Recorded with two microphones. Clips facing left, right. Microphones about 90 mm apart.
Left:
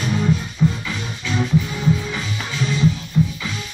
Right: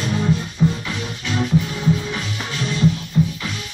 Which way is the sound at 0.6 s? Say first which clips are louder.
Right 1 dB; 20° right (ahead or behind).